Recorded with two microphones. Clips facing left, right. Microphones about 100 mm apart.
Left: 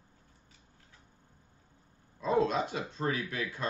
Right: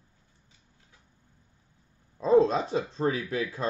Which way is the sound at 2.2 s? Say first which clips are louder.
Right 7 dB; 35° right (ahead or behind).